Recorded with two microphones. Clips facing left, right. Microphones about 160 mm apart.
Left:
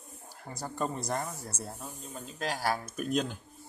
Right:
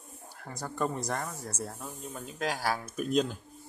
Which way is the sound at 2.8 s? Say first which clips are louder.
Right 3 dB; centre (ahead or behind).